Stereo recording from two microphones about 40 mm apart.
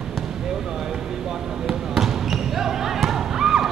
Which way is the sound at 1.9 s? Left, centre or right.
Centre.